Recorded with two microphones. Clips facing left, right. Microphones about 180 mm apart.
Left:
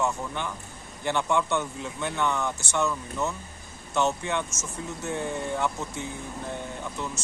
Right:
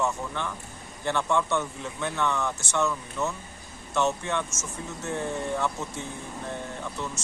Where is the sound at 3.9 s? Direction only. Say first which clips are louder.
Even; 15° left (ahead or behind).